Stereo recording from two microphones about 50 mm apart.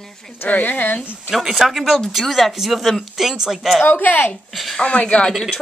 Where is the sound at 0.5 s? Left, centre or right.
Left.